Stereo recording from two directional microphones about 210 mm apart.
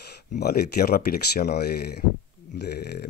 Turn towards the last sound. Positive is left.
turn(degrees=50)  # may be behind; listen again after turning